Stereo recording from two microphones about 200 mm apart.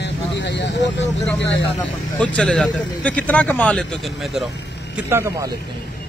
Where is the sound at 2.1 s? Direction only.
5° left (ahead or behind).